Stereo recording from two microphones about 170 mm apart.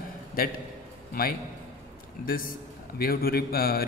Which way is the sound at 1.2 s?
60° left (ahead or behind).